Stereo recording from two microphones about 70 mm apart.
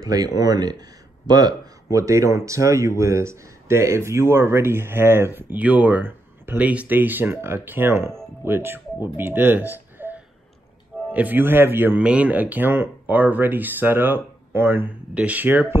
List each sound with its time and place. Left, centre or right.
0.0 s speech: right
12.0 s speech: centre; by 14.9 s right
15.1 s speech: right